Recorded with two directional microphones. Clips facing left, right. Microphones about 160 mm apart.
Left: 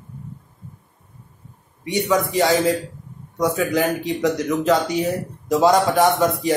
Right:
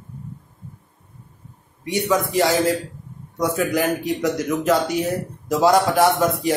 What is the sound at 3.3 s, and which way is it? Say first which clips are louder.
A man's voice: left 1 dB; 10° right (ahead or behind).